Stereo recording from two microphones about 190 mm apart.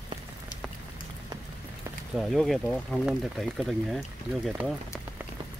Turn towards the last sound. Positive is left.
turn(degrees=0)  # may be behind; listen again after turning